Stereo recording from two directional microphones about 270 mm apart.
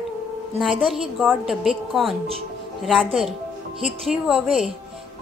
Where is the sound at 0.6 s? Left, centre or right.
Centre.